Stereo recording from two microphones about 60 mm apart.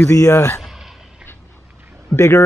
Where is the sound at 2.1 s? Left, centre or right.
Left.